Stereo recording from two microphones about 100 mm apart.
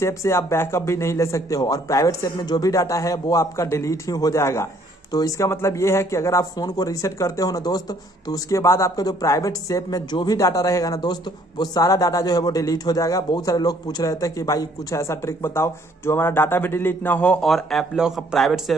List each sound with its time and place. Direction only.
0.0 s a man's voice: 30° left (ahead or behind)
17.4 s speech: 5° left (ahead or behind)